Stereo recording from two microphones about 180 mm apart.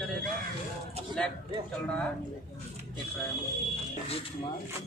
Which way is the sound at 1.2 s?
5° left (ahead or behind).